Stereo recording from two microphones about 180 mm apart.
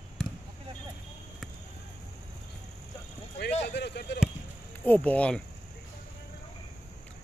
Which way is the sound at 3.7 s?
70° left (ahead or behind).